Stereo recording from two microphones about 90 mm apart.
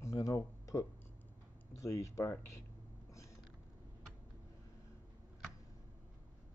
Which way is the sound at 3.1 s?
35° left (ahead or behind).